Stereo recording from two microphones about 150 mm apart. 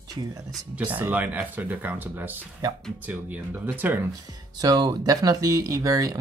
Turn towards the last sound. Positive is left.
turn(degrees=-20)  # may be behind; listen again after turning